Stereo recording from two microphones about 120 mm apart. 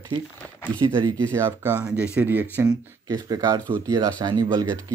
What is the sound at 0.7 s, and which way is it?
Speech, 40° right (ahead or behind).